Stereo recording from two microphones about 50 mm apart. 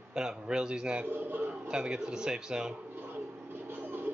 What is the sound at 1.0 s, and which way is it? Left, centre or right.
Speech, right.